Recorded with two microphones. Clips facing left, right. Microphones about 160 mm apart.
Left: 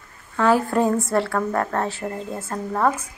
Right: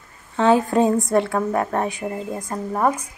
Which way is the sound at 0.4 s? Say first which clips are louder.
Right 2 dB; 20° right (ahead or behind).